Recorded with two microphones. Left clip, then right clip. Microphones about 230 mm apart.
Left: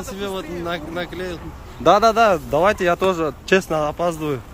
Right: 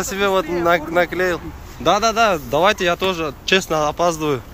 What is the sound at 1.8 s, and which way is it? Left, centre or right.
Speech, left.